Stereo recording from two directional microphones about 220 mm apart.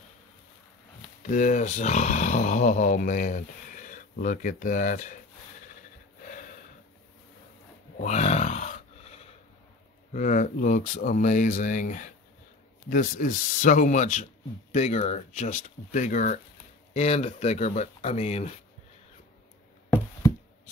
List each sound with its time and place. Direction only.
1.2 s speech: 35° left (ahead or behind)
8.0 s a sound: 30° left (ahead or behind)
10.1 s speech: 35° left (ahead or behind)